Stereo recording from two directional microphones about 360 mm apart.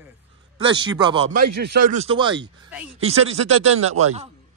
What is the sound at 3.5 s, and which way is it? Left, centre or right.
Speech, right.